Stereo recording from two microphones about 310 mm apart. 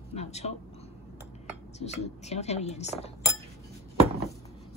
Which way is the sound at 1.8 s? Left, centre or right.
Left.